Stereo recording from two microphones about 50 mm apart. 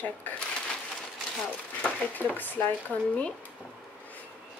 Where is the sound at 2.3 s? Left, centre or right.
Left.